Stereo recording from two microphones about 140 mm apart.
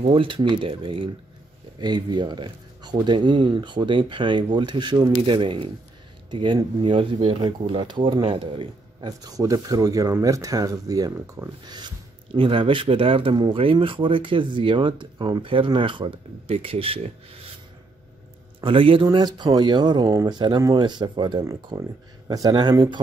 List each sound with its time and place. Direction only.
0.0 s speech: 40° right (ahead or behind); by 11.5 s 20° right (ahead or behind)
11.6 s speech: 30° right (ahead or behind)
18.6 s speech: 40° right (ahead or behind)